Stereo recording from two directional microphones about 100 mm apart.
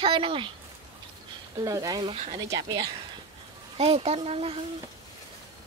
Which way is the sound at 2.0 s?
90° right.